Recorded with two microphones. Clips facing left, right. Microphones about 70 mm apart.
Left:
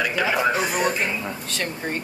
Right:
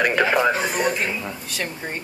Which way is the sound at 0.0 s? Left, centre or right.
Right.